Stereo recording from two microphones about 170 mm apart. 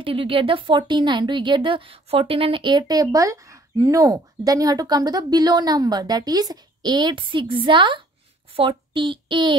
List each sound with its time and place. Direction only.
0.0 s a woman's voice: 30° right (ahead or behind)